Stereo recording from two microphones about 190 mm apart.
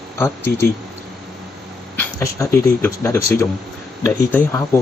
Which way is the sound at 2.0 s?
15° left (ahead or behind).